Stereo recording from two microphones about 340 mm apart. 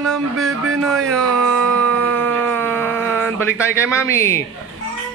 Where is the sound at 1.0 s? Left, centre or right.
Right.